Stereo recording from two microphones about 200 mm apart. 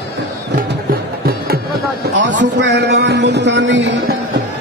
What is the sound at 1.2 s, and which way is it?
Music, 50° right (ahead or behind).